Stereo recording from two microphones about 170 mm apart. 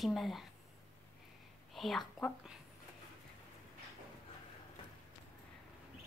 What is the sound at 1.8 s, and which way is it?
Speech, centre (ahead or behind).